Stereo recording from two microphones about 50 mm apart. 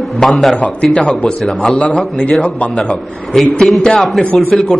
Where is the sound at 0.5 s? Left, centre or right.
Centre.